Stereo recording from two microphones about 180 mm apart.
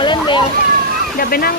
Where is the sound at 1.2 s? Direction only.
55° left (ahead or behind).